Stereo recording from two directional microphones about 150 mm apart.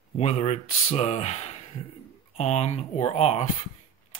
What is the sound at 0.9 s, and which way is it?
Speech, 45° left (ahead or behind).